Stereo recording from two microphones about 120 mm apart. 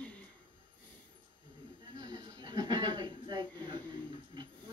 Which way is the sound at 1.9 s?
30° right (ahead or behind).